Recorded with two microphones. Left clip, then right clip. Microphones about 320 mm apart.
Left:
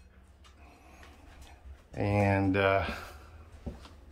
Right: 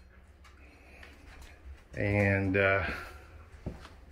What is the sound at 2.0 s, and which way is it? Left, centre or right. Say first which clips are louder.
Speech: even; left.